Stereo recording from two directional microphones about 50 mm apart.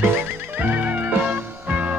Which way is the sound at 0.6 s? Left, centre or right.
Right.